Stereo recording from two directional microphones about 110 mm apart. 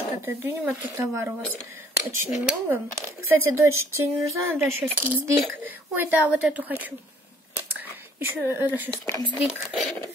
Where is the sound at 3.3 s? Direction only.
25° right (ahead or behind).